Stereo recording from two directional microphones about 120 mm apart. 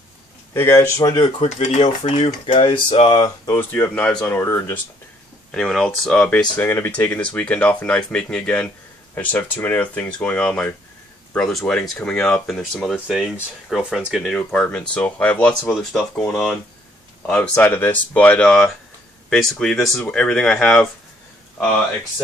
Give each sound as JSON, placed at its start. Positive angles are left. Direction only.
{"t": 0.5, "sound": "speech", "side_deg": 25}
{"t": 1.4, "sound": "speech", "side_deg": 60}
{"t": 2.6, "sound": "a sound", "side_deg": 50}
{"t": 3.5, "sound": "speech", "side_deg": 15}
{"t": 4.3, "sound": "speech", "side_deg": 20}
{"t": 5.5, "sound": "speech", "side_deg": 5}
{"t": 6.5, "sound": "speech", "side_deg": 20}
{"t": 15.7, "sound": "speech", "side_deg": 5}
{"t": 17.3, "sound": "speech", "side_deg": 15}